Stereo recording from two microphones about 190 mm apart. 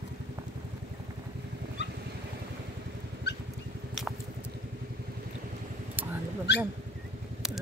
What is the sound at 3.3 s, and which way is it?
Vehicle, 60° left (ahead or behind).